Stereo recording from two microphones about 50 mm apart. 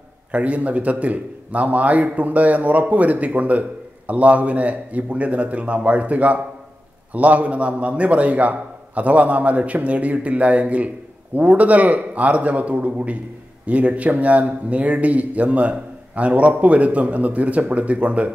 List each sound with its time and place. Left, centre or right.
0.3 s a man's voice: right